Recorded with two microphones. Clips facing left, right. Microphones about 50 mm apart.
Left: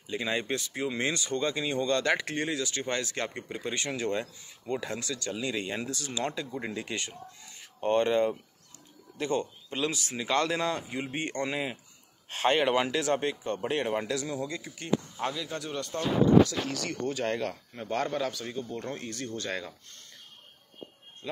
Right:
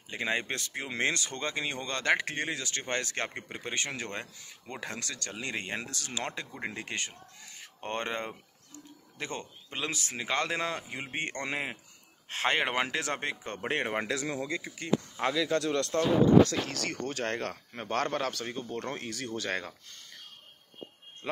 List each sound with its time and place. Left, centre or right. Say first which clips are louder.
0.1 s speech: left 1 dB; right
6.4 s speech: left 3 dB; right
15.3 s speech: right 7 dB; right
18.6 s speech: left 3 dB; right